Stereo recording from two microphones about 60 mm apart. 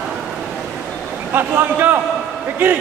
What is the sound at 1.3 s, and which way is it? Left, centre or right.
A man's voice, right.